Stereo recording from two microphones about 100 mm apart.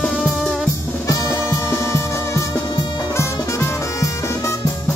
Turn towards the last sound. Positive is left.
turn(degrees=30)  # may be behind; listen again after turning